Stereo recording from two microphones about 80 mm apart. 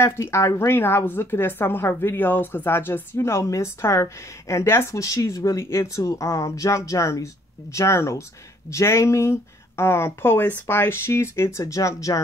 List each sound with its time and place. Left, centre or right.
0.0 s a woman's voice: left